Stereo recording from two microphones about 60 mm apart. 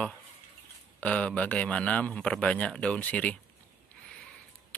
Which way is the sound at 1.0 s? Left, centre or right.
Centre.